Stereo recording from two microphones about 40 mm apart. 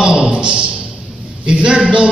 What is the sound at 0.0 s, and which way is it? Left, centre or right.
Music, right.